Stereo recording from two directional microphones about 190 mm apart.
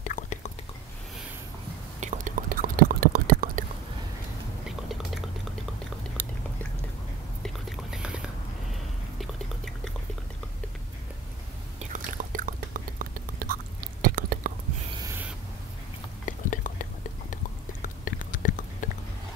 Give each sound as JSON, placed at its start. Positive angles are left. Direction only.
{"t": 0.0, "sound": "whispering", "side_deg": 40}
{"t": 2.0, "sound": "whispering", "side_deg": -40}
{"t": 4.6, "sound": "chewing", "side_deg": 0}
{"t": 7.4, "sound": "whispering", "side_deg": 0}
{"t": 11.8, "sound": "whispering", "side_deg": -45}
{"t": 16.3, "sound": "whispering", "side_deg": 45}
{"t": 17.8, "sound": "whispering", "side_deg": 45}